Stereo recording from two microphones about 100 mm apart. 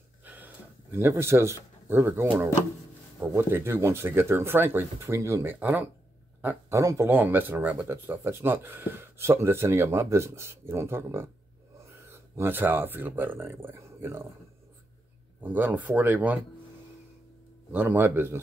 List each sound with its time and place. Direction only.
0.2 s a sound: 15° right (ahead or behind)
3.3 s speech: 25° right (ahead or behind)
6.7 s speech: 30° right (ahead or behind)
7.1 s speech: 20° right (ahead or behind)
15.4 s speech: 15° right (ahead or behind)
17.7 s speech: 20° right (ahead or behind)